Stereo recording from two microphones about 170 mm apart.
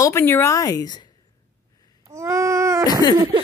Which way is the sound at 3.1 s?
25° right (ahead or behind).